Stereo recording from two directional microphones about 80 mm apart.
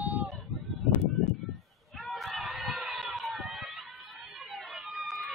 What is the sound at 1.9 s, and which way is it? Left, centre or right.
Run, centre.